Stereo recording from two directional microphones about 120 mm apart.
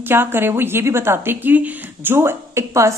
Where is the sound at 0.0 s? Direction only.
20° right (ahead or behind).